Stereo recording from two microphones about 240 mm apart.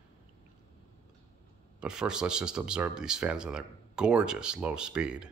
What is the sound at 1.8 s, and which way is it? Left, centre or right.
Speech, centre.